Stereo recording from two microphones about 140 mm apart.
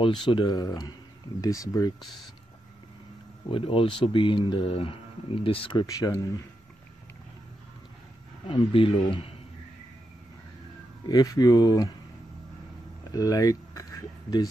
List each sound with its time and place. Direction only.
0.0 s speech: 35° left (ahead or behind)
3.4 s speech: 40° left (ahead or behind)
5.9 s speech: 25° left (ahead or behind)
8.5 s speech: 35° left (ahead or behind)
11.1 s speech: 30° left (ahead or behind)
13.1 s speech: 25° left (ahead or behind)